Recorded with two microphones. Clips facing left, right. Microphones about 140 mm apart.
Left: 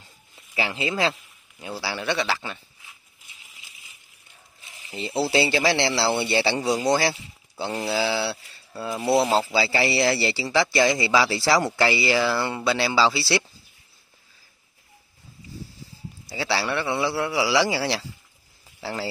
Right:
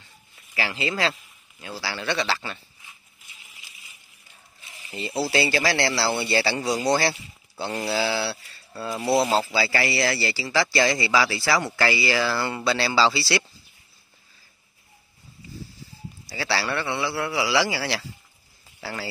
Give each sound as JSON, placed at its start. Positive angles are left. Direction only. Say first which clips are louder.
{"t": 0.6, "sound": "speech", "louder": "left 1 dB", "side_deg": 20}
{"t": 4.9, "sound": "speech", "louder": "left 2 dB", "side_deg": 20}
{"t": 9.0, "sound": "speech", "louder": "left 1 dB", "side_deg": 5}
{"t": 9.5, "sound": "speech", "louder": "left 2 dB", "side_deg": 20}
{"t": 12.0, "sound": "speech", "louder": "left 2 dB", "side_deg": 10}
{"t": 16.3, "sound": "speech", "louder": "left 1 dB", "side_deg": 20}